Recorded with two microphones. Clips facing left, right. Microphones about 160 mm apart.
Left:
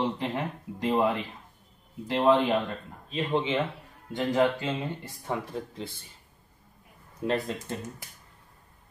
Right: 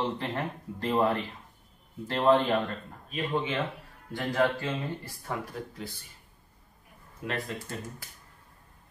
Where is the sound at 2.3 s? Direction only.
15° left (ahead or behind).